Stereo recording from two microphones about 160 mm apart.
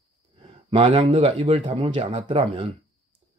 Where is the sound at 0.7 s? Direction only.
35° right (ahead or behind).